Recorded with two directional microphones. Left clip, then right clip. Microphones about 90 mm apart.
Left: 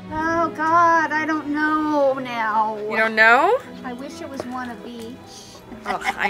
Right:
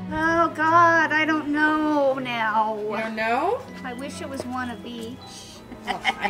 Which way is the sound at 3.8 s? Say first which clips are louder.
Left 1 dB; 5° right (ahead or behind).